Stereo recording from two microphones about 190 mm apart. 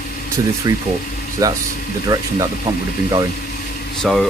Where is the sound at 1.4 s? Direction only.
20° right (ahead or behind).